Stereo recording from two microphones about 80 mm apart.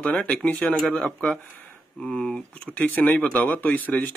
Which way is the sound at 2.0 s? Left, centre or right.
Centre.